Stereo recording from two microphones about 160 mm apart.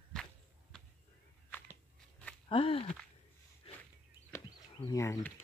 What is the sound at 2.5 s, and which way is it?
Speech, 35° left (ahead or behind).